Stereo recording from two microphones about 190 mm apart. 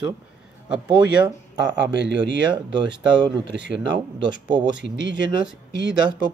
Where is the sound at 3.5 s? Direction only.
65° right (ahead or behind).